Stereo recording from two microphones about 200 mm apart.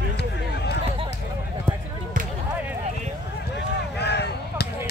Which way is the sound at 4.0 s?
55° left (ahead or behind).